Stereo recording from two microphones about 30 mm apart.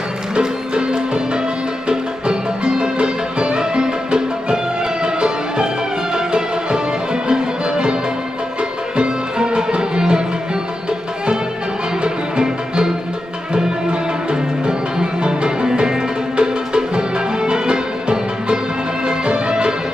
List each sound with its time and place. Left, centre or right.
0.4 s music: right
12.0 s music: right